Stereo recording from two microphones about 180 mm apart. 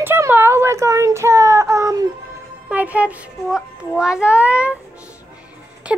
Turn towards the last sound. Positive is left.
turn(degrees=-5)  # may be behind; listen again after turning